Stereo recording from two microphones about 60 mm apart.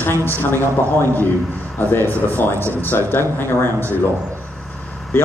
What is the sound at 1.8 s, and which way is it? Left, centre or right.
Speech, left.